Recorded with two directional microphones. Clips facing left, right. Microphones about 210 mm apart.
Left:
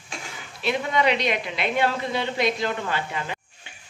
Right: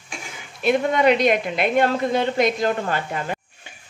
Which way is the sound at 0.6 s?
50° right (ahead or behind).